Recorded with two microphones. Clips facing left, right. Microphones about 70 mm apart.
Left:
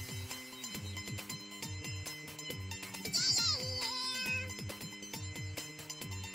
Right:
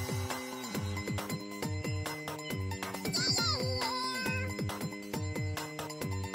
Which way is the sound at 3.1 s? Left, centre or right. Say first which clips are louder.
Right 7 dB; right.